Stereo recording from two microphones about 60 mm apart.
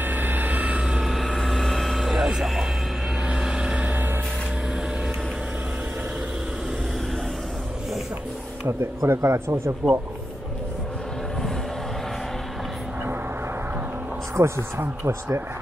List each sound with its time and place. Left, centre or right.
0.0 s vehicle: right
1.0 s vehicle: centre
3.3 s vehicle: centre
8.6 s speech: right
9.8 s speech: right
14.3 s speech: right